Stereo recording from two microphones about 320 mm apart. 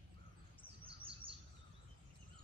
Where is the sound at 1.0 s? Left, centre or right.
Centre.